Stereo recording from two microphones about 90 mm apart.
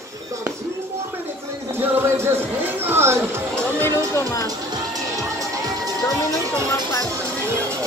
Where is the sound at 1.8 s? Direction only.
25° right (ahead or behind).